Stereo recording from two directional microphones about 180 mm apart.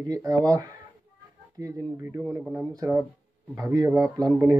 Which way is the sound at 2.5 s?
15° right (ahead or behind).